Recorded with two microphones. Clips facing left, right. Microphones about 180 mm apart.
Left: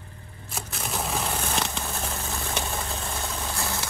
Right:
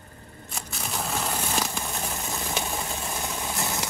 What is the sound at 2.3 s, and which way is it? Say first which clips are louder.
Vehicle: right 1 dB; 15° right (ahead or behind).